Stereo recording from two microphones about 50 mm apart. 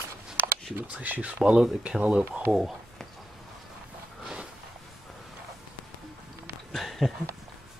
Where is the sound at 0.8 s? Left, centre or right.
Right.